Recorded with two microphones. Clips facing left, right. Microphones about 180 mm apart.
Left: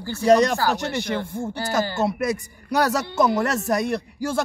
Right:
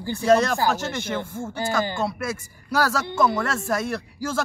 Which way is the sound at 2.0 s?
20° left (ahead or behind).